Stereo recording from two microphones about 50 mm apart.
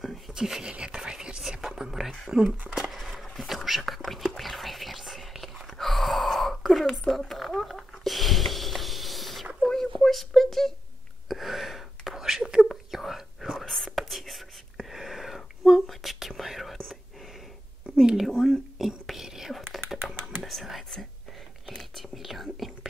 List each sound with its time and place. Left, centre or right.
0.3 s a sound: centre
1.1 s whispering: centre
6.9 s a sound: centre
11.2 s whispering: centre
12.2 s whispering: centre
17.9 s a sound: centre
18.3 s whispering: centre
18.8 s whispering: centre
20.1 s computer keyboard: centre
21.7 s whispering: centre